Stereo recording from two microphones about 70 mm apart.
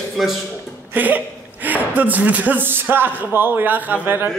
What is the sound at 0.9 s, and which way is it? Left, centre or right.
A man's voice, right.